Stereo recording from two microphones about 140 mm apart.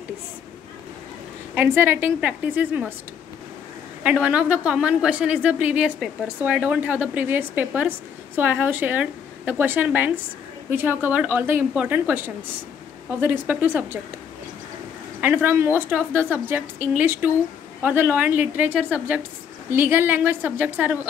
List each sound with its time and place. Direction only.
1.5 s a woman's voice: 15° right (ahead or behind)
4.0 s a woman's voice: 10° right (ahead or behind)
13.2 s a woman's voice: 15° right (ahead or behind)
15.1 s a woman's voice: 15° right (ahead or behind)